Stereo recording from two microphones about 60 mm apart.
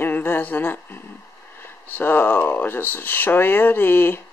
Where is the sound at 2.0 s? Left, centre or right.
Left.